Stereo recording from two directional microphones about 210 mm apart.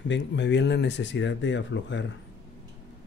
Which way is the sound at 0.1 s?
55° left (ahead or behind).